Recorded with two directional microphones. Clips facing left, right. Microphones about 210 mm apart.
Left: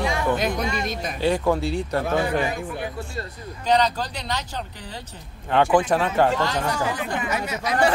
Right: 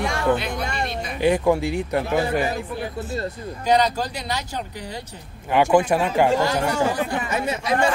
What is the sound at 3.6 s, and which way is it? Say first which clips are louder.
Speech: right 1 dB; 10° right (ahead or behind).